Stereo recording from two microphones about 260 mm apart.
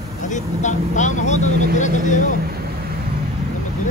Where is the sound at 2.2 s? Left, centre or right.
Right.